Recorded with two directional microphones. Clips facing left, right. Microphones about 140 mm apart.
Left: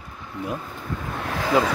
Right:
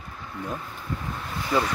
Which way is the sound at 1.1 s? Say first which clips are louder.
Left 7 dB; 85° left.